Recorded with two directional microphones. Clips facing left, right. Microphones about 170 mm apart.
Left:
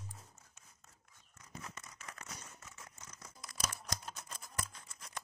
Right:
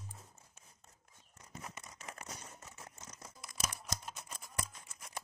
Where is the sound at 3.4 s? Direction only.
10° right (ahead or behind).